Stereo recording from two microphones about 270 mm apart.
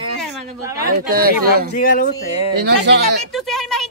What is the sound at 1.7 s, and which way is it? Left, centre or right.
Speech, left.